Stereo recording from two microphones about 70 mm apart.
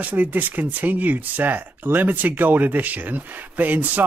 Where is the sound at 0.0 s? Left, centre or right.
Right.